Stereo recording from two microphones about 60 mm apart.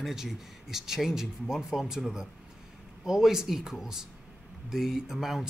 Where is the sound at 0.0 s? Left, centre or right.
Centre.